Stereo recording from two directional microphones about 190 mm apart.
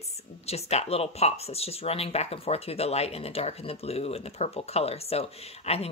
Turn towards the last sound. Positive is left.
turn(degrees=35)  # may be behind; listen again after turning